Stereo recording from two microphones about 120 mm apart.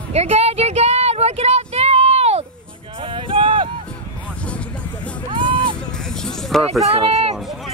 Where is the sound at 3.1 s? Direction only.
45° right (ahead or behind).